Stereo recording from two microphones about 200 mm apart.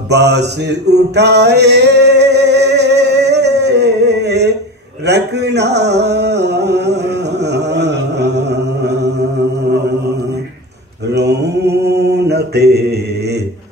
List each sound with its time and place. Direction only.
0.1 s male singing: 55° right (ahead or behind)
5.0 s a sound: 55° right (ahead or behind)
11.1 s mantra: 55° right (ahead or behind)